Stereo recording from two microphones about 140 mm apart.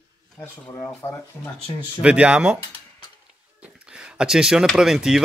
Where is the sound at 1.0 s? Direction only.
15° left (ahead or behind).